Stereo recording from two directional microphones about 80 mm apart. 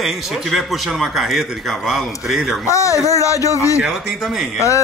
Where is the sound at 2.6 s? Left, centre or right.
Left.